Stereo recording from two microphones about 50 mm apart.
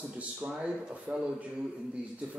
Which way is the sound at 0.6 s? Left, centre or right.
Right.